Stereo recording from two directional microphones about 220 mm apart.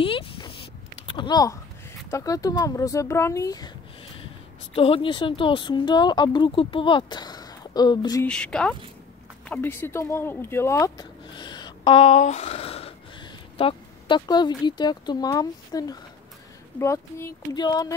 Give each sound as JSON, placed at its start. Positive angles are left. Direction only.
{"t": 0.0, "sound": "a sound", "side_deg": 25}
{"t": 2.0, "sound": "speech", "side_deg": 15}
{"t": 4.7, "sound": "speech", "side_deg": 25}
{"t": 8.3, "sound": "speech", "side_deg": 5}